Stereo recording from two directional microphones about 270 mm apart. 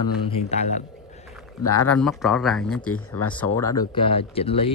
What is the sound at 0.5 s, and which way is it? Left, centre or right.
Speech, left.